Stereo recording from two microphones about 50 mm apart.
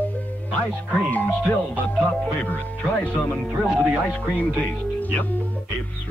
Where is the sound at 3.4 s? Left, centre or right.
Right.